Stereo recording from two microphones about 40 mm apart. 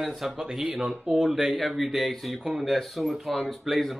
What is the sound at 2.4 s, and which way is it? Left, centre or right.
Speech, centre.